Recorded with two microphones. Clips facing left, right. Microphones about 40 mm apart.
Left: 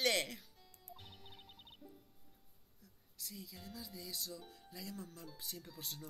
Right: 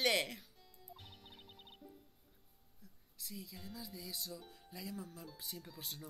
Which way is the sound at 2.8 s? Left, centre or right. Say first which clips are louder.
Even; centre.